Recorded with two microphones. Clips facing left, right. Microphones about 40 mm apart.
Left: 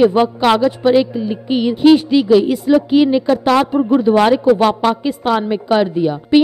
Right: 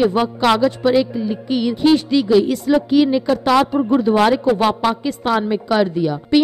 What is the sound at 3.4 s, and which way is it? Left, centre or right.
A woman's voice, centre.